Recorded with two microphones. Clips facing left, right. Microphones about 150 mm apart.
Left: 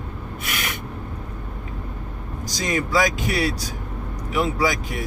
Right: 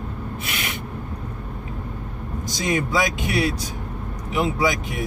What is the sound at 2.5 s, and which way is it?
Speech, 20° right (ahead or behind).